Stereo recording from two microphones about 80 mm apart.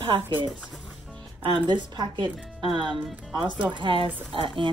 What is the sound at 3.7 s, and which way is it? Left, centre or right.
Speech, right.